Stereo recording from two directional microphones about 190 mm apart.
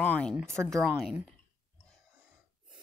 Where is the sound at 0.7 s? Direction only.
Centre (ahead or behind).